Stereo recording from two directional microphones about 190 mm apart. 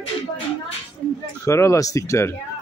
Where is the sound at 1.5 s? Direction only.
15° left (ahead or behind).